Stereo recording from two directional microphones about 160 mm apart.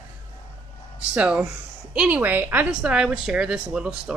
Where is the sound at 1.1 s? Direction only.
5° right (ahead or behind).